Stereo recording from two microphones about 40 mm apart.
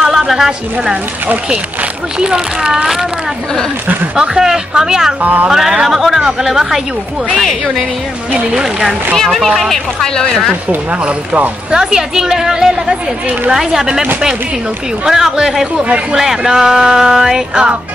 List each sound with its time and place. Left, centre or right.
0.0 s a woman's voice: centre
2.1 s music: centre
3.8 s speech: right
4.2 s music: centre
5.2 s speech: right
5.5 s music: centre
8.5 s music: centre
9.1 s speech: centre
10.0 s speech: centre
10.9 s speech: right
11.7 s music: centre
15.0 s music: centre
15.8 s speech: right
16.2 s music: centre